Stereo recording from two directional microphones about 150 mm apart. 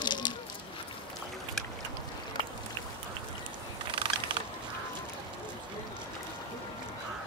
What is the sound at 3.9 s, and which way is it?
Crushing, 35° right (ahead or behind).